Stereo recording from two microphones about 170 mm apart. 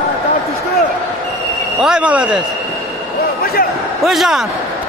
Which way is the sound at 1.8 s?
5° right (ahead or behind).